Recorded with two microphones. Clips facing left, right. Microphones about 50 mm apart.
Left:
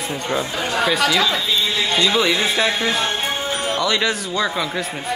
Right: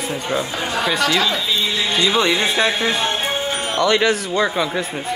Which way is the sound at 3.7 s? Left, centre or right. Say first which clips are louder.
Right 6 dB; right.